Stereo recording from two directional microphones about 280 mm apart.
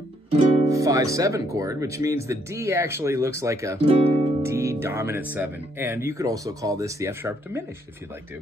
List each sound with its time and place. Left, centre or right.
0.7 s speech: centre
4.4 s speech: centre